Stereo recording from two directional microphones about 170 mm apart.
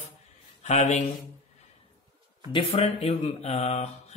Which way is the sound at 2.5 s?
30° left (ahead or behind).